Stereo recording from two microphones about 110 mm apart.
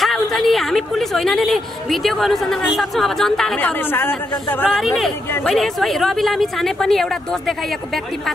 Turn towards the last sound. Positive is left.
turn(degrees=5)  # may be behind; listen again after turning